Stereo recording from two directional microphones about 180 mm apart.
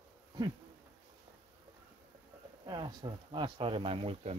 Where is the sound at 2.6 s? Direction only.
25° right (ahead or behind).